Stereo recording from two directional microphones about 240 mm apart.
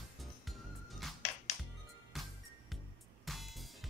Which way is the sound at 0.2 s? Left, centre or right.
Centre.